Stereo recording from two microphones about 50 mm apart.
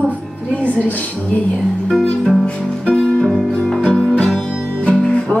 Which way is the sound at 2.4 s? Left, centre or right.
Centre.